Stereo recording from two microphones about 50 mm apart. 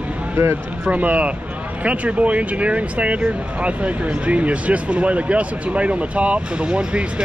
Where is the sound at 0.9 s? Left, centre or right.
Right.